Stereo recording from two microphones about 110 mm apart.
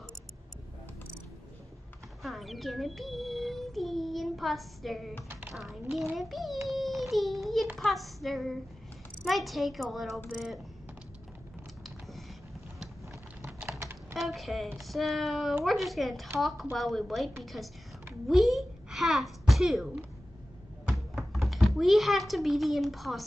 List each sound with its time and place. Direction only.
2.2 s a child's voice: centre (ahead or behind)
6.7 s a sound: centre (ahead or behind)
7.7 s speech: centre (ahead or behind)
13.7 s typing: 25° right (ahead or behind)
14.1 s speech: centre (ahead or behind)
18.2 s babbling: centre (ahead or behind)
20.9 s speech: centre (ahead or behind)